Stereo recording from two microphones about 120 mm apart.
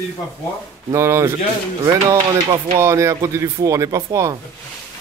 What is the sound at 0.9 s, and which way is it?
Speech, 20° right (ahead or behind).